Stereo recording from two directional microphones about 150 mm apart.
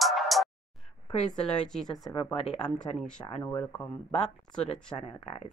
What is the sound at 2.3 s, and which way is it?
Speech, 40° left (ahead or behind).